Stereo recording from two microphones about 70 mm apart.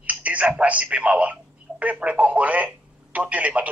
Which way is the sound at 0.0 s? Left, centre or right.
Right.